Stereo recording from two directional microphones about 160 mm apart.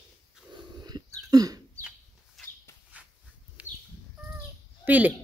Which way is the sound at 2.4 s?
Centre (ahead or behind).